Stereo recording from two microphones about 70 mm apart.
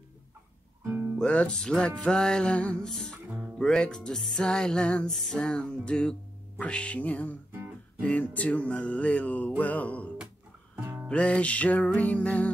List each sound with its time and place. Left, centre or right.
0.8 s music: right
1.1 s music: centre
3.3 s music: centre
3.5 s music: centre
10.8 s music: right
11.1 s music: centre